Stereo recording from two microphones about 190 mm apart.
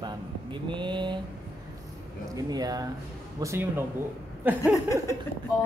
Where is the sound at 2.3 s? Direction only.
20° right (ahead or behind).